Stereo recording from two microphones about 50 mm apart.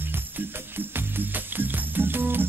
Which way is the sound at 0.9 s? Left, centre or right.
Right.